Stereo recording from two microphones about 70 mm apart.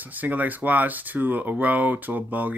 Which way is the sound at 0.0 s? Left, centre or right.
Right.